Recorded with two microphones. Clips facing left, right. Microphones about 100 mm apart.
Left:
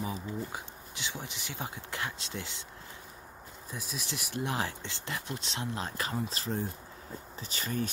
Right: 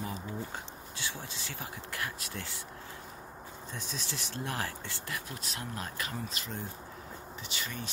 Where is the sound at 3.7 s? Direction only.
10° left (ahead or behind); by 7.9 s 40° left (ahead or behind).